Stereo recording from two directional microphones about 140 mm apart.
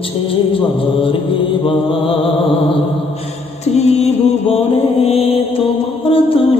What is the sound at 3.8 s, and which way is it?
Music, 50° left (ahead or behind).